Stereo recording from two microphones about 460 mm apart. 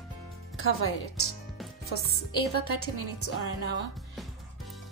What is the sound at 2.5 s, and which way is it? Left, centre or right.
A woman's voice, left.